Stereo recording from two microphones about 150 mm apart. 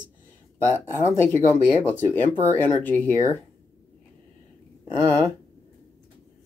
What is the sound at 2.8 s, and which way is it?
Speech, 10° left (ahead or behind).